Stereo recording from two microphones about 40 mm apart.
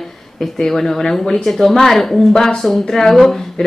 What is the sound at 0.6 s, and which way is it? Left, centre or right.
Speech, centre.